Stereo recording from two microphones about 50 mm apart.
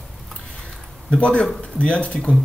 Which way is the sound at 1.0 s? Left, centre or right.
Left.